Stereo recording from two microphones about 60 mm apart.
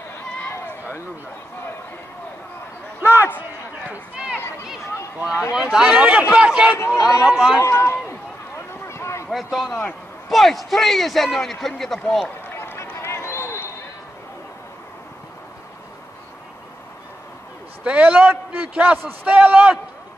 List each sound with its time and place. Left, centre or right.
3.0 s a sound: right
5.5 s speech: centre
5.9 s a man's voice: right
7.5 s run: left
8.8 s a sound: left
9.3 s a man's voice: centre
9.7 s a man's voice: left
10.3 s a man's voice: centre
12.5 s run: left
12.9 s a sound: left
17.8 s a man's voice: right